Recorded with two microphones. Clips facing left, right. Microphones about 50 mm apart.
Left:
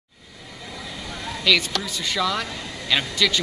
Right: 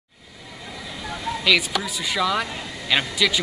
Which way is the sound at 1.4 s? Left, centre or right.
Centre.